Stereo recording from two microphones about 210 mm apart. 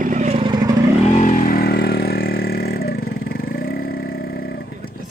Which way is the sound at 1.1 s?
40° left (ahead or behind).